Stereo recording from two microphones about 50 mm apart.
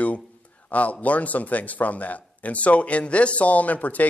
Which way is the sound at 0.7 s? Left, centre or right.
Left.